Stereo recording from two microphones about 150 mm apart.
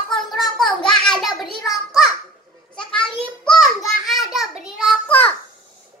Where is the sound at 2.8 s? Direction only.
5° left (ahead or behind).